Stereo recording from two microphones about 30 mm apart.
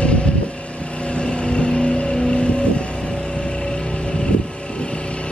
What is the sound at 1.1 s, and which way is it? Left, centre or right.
Vehicle, left.